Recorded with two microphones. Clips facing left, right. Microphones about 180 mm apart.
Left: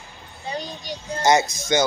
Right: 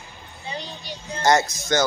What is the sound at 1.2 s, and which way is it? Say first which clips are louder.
Speech: left 1 dB; 15° left (ahead or behind).